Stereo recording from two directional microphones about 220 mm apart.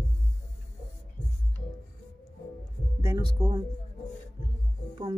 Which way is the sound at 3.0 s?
20° right (ahead or behind).